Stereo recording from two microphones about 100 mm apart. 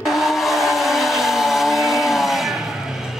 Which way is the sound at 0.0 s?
Centre (ahead or behind).